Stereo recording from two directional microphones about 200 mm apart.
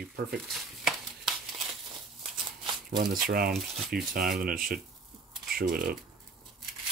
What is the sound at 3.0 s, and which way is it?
Speech, 50° right (ahead or behind).